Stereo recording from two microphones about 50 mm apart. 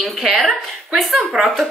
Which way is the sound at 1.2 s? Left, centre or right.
Right.